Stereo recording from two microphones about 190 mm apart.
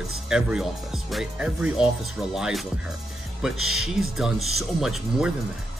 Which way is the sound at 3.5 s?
90° right.